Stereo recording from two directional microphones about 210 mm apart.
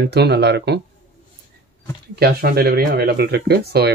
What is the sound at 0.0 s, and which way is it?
Speech, 50° right (ahead or behind).